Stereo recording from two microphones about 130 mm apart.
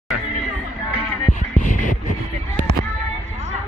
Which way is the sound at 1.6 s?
80° left.